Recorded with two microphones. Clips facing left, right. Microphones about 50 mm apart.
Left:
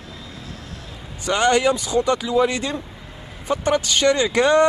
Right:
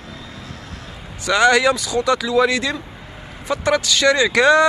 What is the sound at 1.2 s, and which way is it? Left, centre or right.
Speech, right.